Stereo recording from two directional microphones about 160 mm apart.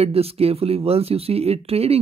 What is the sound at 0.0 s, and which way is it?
Speech, 40° right (ahead or behind).